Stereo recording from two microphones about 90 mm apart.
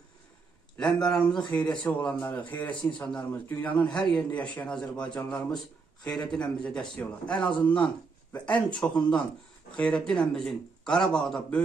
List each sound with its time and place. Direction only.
0.7 s a man's voice: 5° left (ahead or behind)
9.8 s a man's voice: 10° left (ahead or behind)